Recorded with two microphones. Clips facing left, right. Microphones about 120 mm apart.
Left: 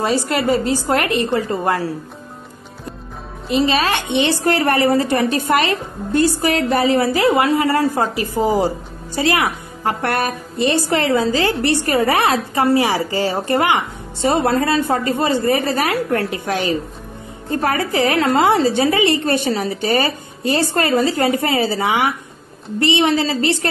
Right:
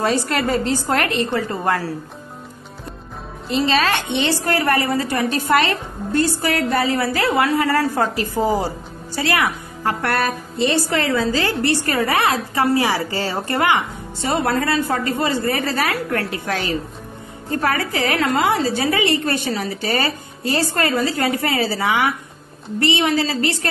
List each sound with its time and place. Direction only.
0.0 s speech: 5° left (ahead or behind)
3.4 s speech: 10° left (ahead or behind)
4.5 s a woman's voice: 25° left (ahead or behind)
5.5 s a woman's voice: 15° left (ahead or behind)
8.2 s a woman's voice: 15° left (ahead or behind)
14.2 s a woman's voice: 25° left (ahead or behind)
17.5 s a woman's voice: 25° left (ahead or behind)